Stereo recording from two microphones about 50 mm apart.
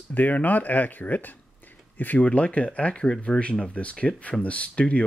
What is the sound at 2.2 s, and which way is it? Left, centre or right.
Speech, left.